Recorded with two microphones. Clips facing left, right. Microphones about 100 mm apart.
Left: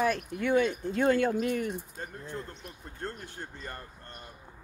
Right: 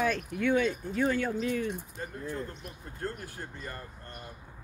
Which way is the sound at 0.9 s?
30° left (ahead or behind).